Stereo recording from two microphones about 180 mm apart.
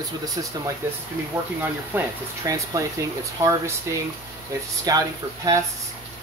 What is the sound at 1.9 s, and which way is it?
Speech, 15° right (ahead or behind).